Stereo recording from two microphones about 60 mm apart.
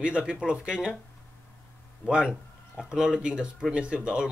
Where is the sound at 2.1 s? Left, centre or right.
Centre.